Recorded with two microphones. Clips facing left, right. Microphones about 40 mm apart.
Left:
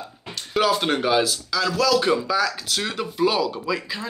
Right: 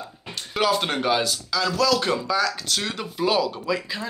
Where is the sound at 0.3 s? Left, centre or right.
Centre.